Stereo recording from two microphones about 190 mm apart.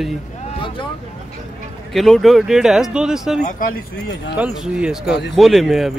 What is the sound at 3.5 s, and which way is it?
Speech, 45° left (ahead or behind).